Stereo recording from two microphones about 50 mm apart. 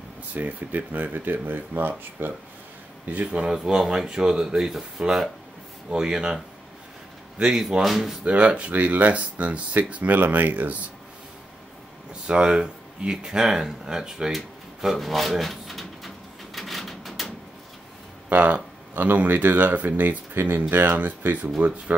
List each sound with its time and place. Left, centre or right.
0.3 s speech: right
3.5 s speech: centre
7.3 s speech: centre
8.2 s speech: right
12.1 s speech: centre
14.3 s drawer open or close: centre
16.5 s a sound: centre
18.3 s speech: right